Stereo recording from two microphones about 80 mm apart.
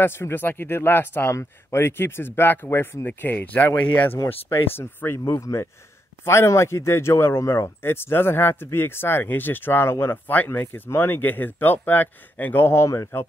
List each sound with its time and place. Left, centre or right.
0.0 s a man's voice: left